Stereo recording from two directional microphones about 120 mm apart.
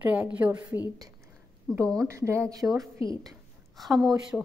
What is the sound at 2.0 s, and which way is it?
Speech, 25° right (ahead or behind).